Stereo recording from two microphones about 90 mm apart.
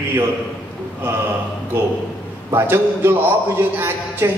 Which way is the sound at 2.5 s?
25° right (ahead or behind).